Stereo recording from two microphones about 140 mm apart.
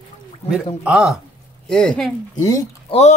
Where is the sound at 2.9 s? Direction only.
50° left (ahead or behind).